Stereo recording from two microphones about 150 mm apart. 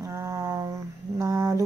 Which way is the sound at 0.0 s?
20° right (ahead or behind).